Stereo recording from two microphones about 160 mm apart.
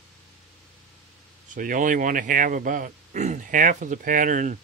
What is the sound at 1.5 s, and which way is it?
Speech, 60° right (ahead or behind).